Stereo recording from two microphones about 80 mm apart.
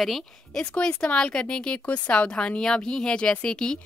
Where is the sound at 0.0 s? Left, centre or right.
Centre.